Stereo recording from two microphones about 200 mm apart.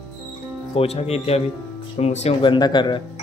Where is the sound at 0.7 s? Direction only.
30° left (ahead or behind).